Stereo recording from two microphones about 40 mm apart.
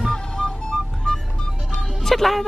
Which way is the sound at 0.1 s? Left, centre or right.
Centre.